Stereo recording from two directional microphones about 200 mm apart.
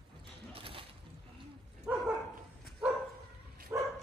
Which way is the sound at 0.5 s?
30° right (ahead or behind).